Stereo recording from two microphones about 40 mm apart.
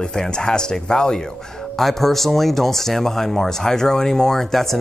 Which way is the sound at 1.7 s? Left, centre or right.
Centre.